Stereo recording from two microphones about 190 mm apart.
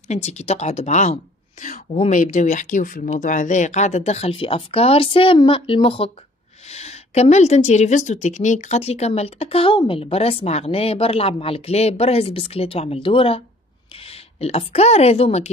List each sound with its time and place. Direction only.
0.1 s a woman's voice: 35° left (ahead or behind)